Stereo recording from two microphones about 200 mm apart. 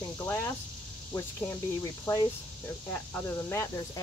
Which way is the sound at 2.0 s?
15° left (ahead or behind).